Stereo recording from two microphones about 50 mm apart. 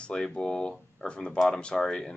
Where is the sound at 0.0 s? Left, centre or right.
Centre.